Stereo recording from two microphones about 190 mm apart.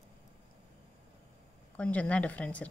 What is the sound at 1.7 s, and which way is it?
Speech, 5° left (ahead or behind).